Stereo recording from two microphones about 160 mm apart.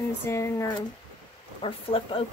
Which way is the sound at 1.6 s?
35° left (ahead or behind).